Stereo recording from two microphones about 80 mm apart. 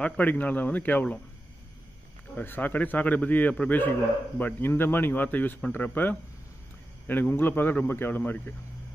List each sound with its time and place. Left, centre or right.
0.0 s a man's voice: left
2.3 s a man's voice: left